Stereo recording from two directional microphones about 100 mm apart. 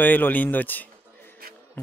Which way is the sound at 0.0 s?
20° left (ahead or behind).